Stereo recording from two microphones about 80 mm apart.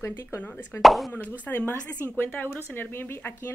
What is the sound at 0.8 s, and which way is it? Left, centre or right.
Speech, centre.